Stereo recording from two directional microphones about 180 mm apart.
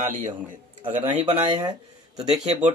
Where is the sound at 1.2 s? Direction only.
30° right (ahead or behind).